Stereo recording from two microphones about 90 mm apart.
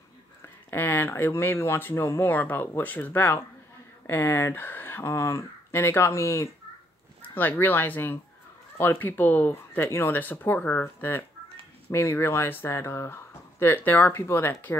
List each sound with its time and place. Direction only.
0.7 s speech: 25° left (ahead or behind)
7.2 s speech: 20° left (ahead or behind)